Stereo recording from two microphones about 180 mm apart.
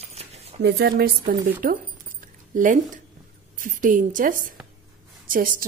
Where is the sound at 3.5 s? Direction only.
45° right (ahead or behind).